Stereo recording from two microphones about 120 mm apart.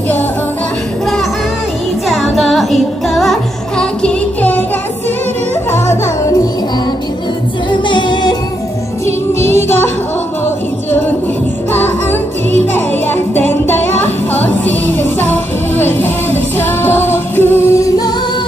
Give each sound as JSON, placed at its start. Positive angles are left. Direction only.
{"t": 2.0, "sound": "music", "side_deg": 0}
{"t": 7.9, "sound": "music", "side_deg": 40}
{"t": 9.0, "sound": "music", "side_deg": 20}
{"t": 11.7, "sound": "music", "side_deg": 15}